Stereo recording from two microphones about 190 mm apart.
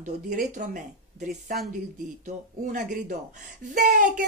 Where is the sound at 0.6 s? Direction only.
40° right (ahead or behind).